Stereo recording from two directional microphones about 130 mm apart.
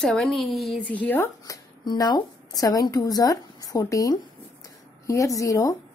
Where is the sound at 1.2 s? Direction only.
30° left (ahead or behind).